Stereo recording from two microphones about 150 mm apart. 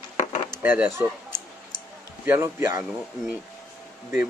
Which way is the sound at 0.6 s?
15° right (ahead or behind).